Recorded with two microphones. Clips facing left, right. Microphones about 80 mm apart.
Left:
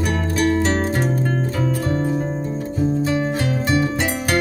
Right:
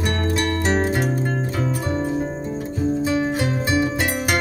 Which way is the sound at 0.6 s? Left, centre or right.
Centre.